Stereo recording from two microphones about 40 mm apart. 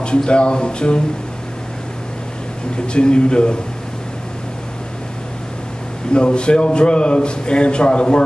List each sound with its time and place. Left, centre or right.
0.0 s a man's voice: left
2.7 s a man's voice: left
6.1 s a man's voice: left